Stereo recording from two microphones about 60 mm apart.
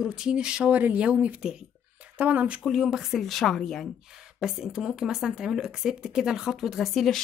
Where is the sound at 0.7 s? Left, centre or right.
Right.